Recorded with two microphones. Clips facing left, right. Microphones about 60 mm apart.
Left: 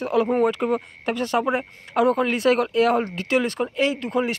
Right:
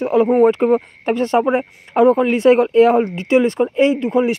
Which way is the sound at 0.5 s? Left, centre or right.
Right.